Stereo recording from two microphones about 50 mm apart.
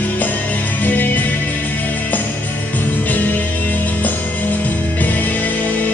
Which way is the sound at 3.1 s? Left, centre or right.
Left.